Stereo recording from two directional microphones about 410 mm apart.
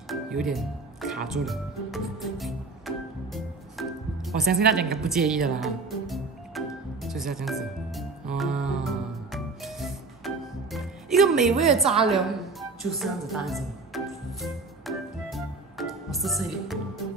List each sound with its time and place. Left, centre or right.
0.1 s speech: centre
4.5 s a woman's voice: right
5.0 s music: centre